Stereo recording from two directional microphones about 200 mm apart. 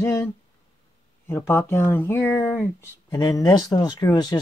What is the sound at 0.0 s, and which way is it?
Speech, 15° left (ahead or behind).